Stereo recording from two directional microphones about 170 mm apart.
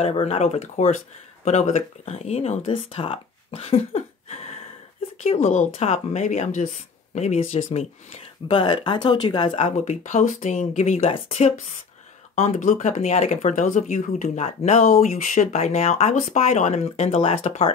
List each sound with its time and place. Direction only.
0.0 s speech: 40° left (ahead or behind)